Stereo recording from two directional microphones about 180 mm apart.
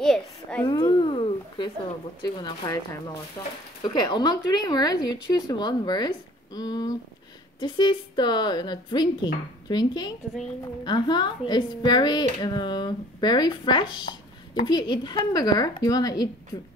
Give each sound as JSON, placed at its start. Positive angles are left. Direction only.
{"t": 0.0, "sound": "a child's voice", "side_deg": 5}
{"t": 0.7, "sound": "a sound", "side_deg": 25}
{"t": 2.2, "sound": "speech", "side_deg": 20}
{"t": 3.8, "sound": "speech", "side_deg": 25}